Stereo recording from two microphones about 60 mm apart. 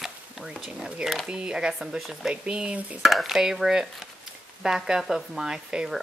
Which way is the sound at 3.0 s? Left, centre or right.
Centre.